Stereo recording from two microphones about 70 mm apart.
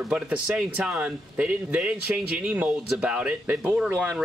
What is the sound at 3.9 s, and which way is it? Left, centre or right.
Speech, right.